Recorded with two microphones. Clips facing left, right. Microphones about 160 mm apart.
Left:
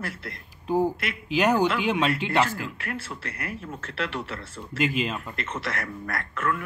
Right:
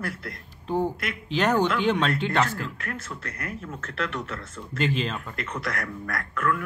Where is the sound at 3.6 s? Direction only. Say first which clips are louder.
Right 1 dB; 30° left (ahead or behind).